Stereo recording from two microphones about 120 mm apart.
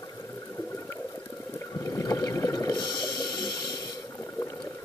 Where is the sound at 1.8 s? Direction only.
25° left (ahead or behind).